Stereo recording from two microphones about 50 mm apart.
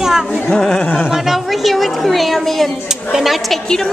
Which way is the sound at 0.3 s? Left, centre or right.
Centre.